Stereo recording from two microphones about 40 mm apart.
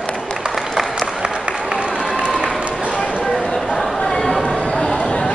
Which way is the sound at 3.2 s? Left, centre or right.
Centre.